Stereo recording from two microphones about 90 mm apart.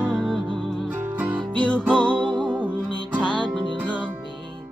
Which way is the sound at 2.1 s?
60° right (ahead or behind).